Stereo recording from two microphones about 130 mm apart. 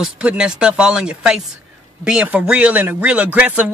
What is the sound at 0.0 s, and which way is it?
Speech, 10° right (ahead or behind).